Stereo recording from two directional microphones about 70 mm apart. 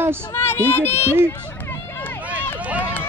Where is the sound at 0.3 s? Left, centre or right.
Left.